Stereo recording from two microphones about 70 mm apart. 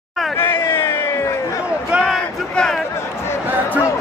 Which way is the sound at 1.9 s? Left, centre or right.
Centre.